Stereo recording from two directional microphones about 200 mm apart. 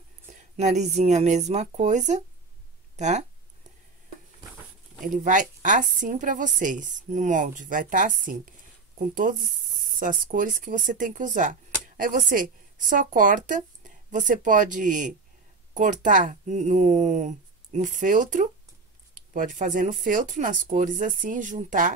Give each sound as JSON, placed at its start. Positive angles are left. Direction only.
{"t": 0.3, "sound": "a woman's voice", "side_deg": -35}
{"t": 5.0, "sound": "a woman's voice", "side_deg": -40}